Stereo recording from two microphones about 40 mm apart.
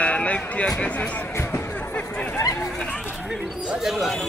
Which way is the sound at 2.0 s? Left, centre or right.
Left.